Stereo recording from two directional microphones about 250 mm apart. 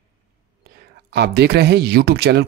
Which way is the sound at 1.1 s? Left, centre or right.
Right.